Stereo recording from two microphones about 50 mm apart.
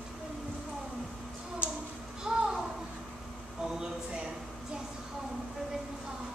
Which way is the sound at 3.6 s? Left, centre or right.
Centre.